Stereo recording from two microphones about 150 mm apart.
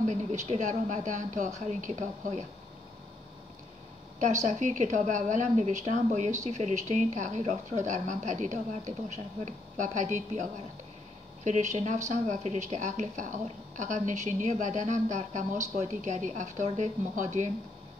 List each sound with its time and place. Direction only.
0.0 s a woman's voice: 50° right (ahead or behind)
4.2 s a woman's voice: 50° right (ahead or behind)
11.4 s a woman's voice: 55° right (ahead or behind)